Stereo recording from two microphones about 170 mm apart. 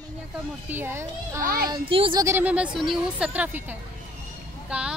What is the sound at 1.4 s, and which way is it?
Speech, 60° right (ahead or behind).